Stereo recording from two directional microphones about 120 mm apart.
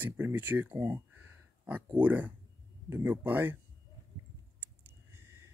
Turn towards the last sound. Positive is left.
turn(degrees=-20)  # may be behind; listen again after turning